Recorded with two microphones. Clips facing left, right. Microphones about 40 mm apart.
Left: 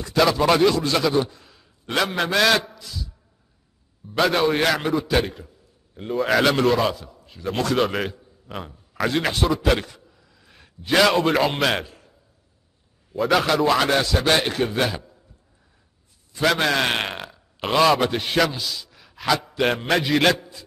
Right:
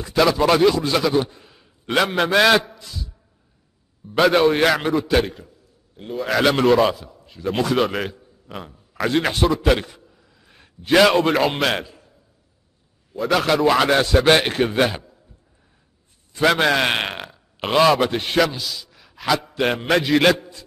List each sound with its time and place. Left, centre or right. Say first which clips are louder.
0.0 s a man's voice: right 1 dB; centre
1.2 s a sound: even; centre
2.3 s a man's voice: right 3 dB; centre
2.7 s a sound: even; centre
4.1 s a man's voice: right 4 dB; centre
6.5 s a man's voice: right 4 dB; centre
9.6 s a sound: right 2 dB; centre
10.9 s a man's voice: right 3 dB; centre
11.8 s a sound: right 1 dB; centre
13.1 s a man's voice: right 1 dB; centre
14.2 s a man's voice: right 4 dB; right
16.3 s a man's voice: right 3 dB; centre